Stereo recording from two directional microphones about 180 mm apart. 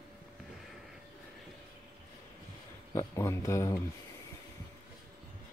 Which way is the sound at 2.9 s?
15° left (ahead or behind).